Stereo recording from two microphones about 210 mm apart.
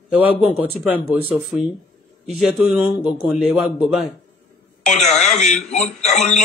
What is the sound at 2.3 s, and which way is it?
A man's voice, centre (ahead or behind).